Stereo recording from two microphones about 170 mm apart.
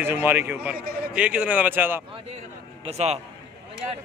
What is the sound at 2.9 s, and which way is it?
Speech, 40° right (ahead or behind).